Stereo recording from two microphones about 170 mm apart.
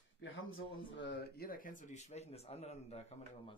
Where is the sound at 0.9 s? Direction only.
90° left.